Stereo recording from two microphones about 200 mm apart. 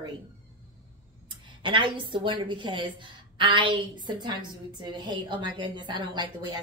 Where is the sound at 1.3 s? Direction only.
25° right (ahead or behind).